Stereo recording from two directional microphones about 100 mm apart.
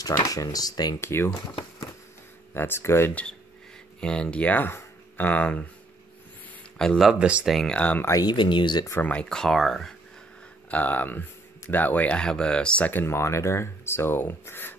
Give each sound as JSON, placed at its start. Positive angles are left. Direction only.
{"t": 0.0, "sound": "speech", "side_deg": 35}
{"t": 1.0, "sound": "speech", "side_deg": 25}
{"t": 2.5, "sound": "speech", "side_deg": 25}
{"t": 4.0, "sound": "speech", "side_deg": 10}
{"t": 7.0, "sound": "speech", "side_deg": -5}
{"t": 7.4, "sound": "speech", "side_deg": 0}
{"t": 7.7, "sound": "speech", "side_deg": 15}
{"t": 8.0, "sound": "speech", "side_deg": 35}
{"t": 8.3, "sound": "speech", "side_deg": 50}
{"t": 9.0, "sound": "speech", "side_deg": 10}
{"t": 10.7, "sound": "speech", "side_deg": 15}